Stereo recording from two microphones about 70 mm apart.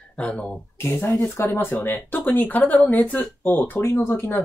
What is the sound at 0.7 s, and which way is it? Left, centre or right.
Speech, left.